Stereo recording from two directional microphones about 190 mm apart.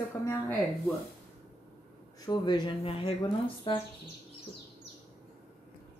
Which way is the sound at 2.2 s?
20° left (ahead or behind).